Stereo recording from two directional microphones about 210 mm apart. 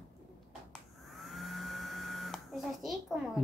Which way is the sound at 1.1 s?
Centre (ahead or behind).